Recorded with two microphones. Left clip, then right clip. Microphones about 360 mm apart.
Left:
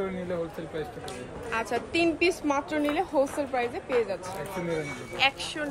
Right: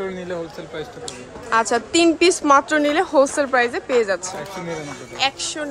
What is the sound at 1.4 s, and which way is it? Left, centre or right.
A woman's voice, centre.